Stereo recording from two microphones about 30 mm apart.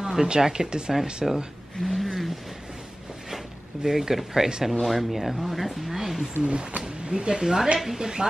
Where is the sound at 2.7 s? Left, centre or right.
Centre.